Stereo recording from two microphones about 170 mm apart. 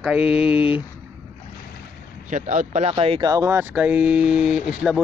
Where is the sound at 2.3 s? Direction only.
45° right (ahead or behind).